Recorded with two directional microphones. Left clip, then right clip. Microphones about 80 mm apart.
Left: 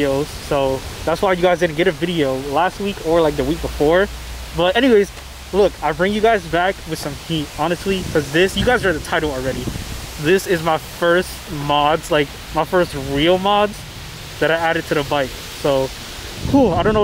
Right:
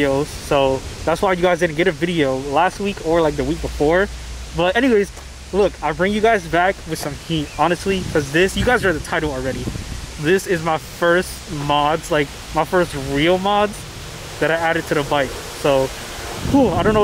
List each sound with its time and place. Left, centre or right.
0.0 s speech: centre